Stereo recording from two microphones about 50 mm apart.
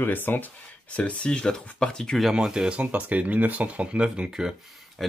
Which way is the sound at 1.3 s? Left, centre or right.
Centre.